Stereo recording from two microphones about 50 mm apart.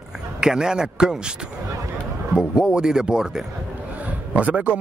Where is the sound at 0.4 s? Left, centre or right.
Centre.